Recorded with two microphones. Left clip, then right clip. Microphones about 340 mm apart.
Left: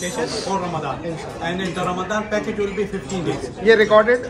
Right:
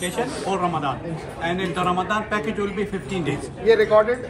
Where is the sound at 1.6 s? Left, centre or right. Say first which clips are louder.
Right 2 dB; right.